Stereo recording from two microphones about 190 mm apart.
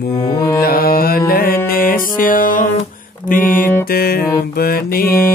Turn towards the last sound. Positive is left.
turn(degrees=50)  # may be behind; listen again after turning